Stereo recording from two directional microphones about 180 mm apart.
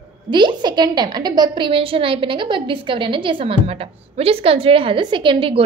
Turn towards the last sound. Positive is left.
turn(degrees=-30)  # may be behind; listen again after turning